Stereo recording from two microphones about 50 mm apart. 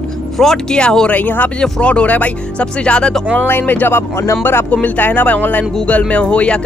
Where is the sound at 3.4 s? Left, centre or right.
Left.